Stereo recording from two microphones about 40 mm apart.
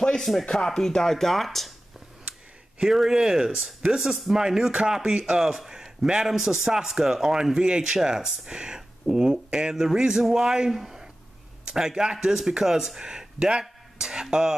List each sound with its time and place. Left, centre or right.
0.2 s speech: centre
0.5 s speech: centre
2.9 s speech: centre
10.8 s a sound: centre
11.6 s speech: centre